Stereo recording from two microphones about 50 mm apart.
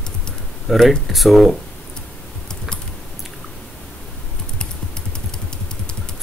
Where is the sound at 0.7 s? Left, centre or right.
Centre.